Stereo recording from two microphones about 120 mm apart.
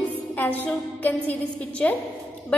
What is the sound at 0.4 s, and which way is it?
A woman's voice, 15° left (ahead or behind).